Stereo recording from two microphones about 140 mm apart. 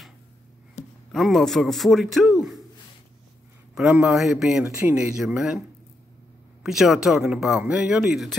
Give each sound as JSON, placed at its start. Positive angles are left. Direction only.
{"t": 1.1, "sound": "speech", "side_deg": 0}
{"t": 3.7, "sound": "speech", "side_deg": -5}
{"t": 4.6, "sound": "speech", "side_deg": -20}
{"t": 4.9, "sound": "speech", "side_deg": -5}
{"t": 6.6, "sound": "speech", "side_deg": -5}